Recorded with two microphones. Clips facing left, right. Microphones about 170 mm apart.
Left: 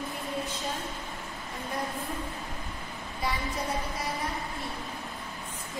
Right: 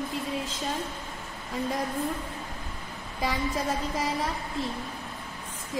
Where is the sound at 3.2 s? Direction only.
90° right.